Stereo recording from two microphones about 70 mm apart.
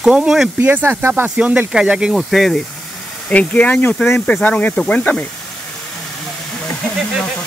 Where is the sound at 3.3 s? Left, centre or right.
Centre.